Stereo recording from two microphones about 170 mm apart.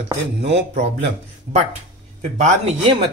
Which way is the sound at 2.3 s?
40° right (ahead or behind).